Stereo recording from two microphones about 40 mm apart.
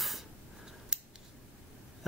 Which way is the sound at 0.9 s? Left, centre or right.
Centre.